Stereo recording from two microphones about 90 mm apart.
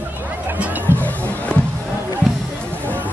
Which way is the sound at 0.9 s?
20° left (ahead or behind).